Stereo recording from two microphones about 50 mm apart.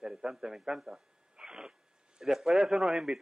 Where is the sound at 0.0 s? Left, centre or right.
Centre.